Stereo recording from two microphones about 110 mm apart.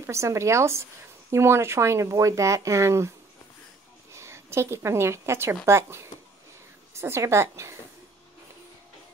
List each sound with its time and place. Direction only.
0.0 s speech: 25° right (ahead or behind)
4.1 s speech: 25° right (ahead or behind)